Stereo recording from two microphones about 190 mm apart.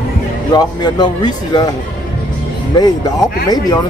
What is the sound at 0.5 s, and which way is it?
Speech, 20° left (ahead or behind).